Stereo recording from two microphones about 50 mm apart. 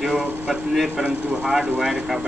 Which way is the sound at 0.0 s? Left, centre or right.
Centre.